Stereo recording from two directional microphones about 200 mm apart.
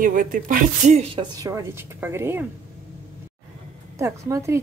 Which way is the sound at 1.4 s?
15° right (ahead or behind).